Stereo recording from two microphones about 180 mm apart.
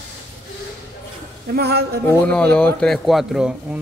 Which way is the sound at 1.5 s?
65° right (ahead or behind).